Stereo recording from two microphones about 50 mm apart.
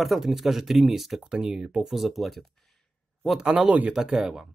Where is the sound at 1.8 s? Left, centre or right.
Centre.